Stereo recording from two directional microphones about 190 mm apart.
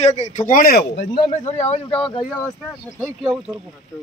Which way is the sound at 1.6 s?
35° left (ahead or behind).